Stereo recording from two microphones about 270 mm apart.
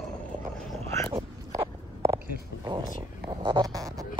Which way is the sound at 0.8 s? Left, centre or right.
Centre.